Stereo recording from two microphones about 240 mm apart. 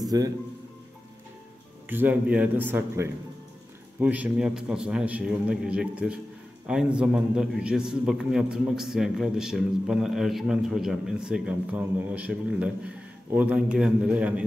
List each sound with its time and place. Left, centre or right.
0.0 s speech: centre
1.9 s a man's voice: centre